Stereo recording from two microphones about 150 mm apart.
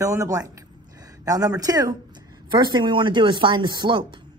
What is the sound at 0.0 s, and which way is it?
A man's voice, 20° right (ahead or behind).